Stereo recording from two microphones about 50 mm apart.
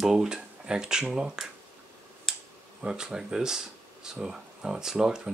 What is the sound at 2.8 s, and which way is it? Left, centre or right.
Speech, centre.